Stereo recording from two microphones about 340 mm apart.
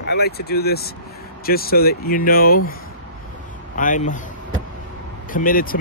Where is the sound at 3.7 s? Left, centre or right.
Left.